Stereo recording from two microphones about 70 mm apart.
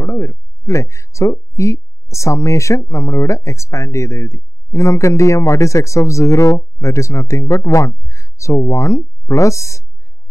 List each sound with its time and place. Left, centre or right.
0.0 s speech: left